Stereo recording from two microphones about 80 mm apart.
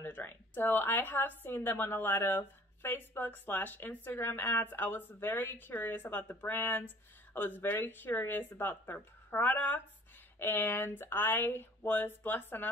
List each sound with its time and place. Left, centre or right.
0.0 s speech: left